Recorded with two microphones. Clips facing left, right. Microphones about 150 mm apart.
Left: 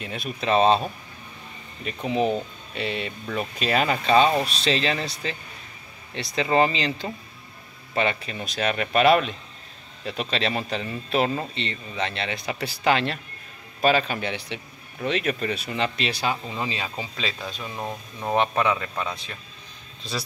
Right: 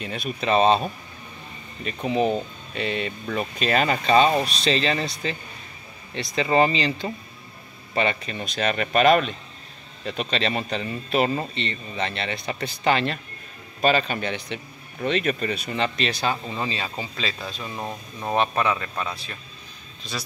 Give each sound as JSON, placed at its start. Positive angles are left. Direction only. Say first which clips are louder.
{"t": 0.0, "sound": "speech", "louder": "right 2 dB", "side_deg": 0}
{"t": 2.0, "sound": "speech", "louder": "right 1 dB", "side_deg": 0}
{"t": 6.1, "sound": "speech", "louder": "right 1 dB", "side_deg": 0}
{"t": 17.6, "sound": "speech", "louder": "even", "side_deg": 0}
{"t": 20.0, "sound": "speech", "louder": "left 2 dB", "side_deg": 30}